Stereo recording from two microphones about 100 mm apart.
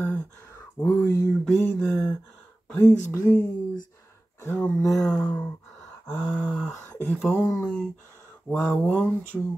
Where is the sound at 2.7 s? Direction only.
20° left (ahead or behind).